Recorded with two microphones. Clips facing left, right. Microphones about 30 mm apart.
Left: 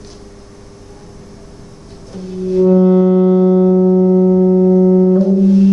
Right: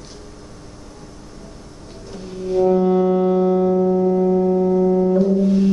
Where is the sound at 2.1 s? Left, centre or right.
Centre.